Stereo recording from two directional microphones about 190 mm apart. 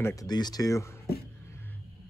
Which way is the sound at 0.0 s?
20° left (ahead or behind).